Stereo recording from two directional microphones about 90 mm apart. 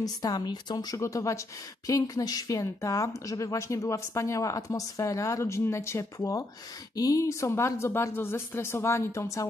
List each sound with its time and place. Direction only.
0.0 s speech: 45° left (ahead or behind)